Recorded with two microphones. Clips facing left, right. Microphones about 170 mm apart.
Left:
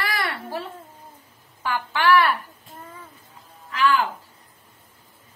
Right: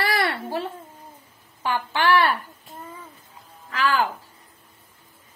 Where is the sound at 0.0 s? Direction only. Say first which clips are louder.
Right 4 dB; 30° right (ahead or behind).